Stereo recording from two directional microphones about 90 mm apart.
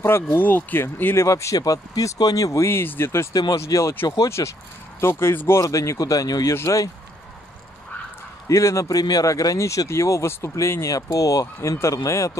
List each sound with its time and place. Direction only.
0.0 s speech: 25° left (ahead or behind)
3.3 s speech: 40° left (ahead or behind)
8.5 s speech: 35° left (ahead or behind)